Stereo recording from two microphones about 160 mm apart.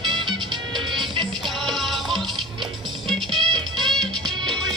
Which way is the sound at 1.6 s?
Centre (ahead or behind).